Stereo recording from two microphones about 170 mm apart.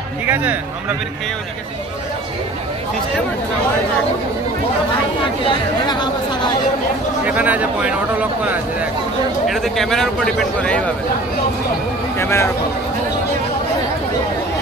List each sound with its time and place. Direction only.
0.3 s a man's voice: 10° right (ahead or behind)
5.4 s speech: 25° left (ahead or behind)
7.2 s a man's voice: 10° right (ahead or behind)
9.5 s a man's voice: centre (ahead or behind)
12.2 s speech: 15° left (ahead or behind)